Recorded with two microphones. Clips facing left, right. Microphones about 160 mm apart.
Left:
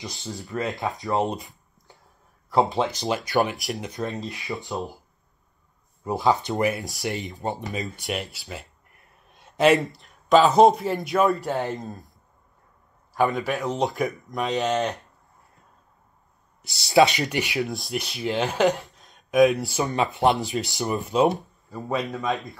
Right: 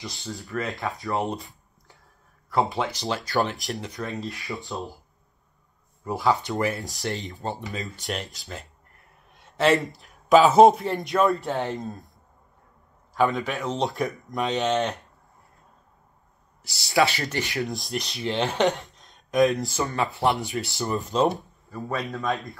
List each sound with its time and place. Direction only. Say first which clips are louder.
0.0 s speech: left 1 dB; 20° left (ahead or behind)
2.7 s speech: left 3 dB; 20° left (ahead or behind)
6.0 s speech: left 2 dB; 20° left (ahead or behind)
8.1 s speech: left 1 dB; 5° left (ahead or behind)
9.6 s speech: left 2 dB; 15° left (ahead or behind)
9.8 s speech: right 1 dB; centre (ahead or behind)
13.3 s speech: left 2 dB; centre (ahead or behind)
13.6 s speech: left 2 dB; 15° left (ahead or behind)
13.8 s speech: left 2 dB; centre (ahead or behind)
16.6 s speech: left 4 dB; 20° left (ahead or behind)
17.6 s speech: left 1 dB; centre (ahead or behind)
19.5 s speech: left 2 dB; 15° left (ahead or behind)
21.7 s speech: left 3 dB; 20° left (ahead or behind)
22.3 s speech: right 1 dB; centre (ahead or behind)